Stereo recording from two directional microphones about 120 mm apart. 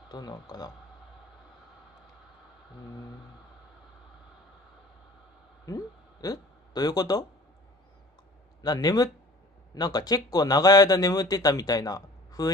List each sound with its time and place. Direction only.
0.1 s speech: 35° left (ahead or behind)
5.7 s speech: 30° left (ahead or behind)
8.6 s speech: 35° left (ahead or behind)